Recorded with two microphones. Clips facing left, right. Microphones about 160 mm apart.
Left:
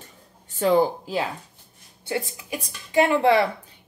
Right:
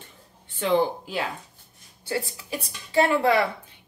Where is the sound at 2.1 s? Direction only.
15° left (ahead or behind).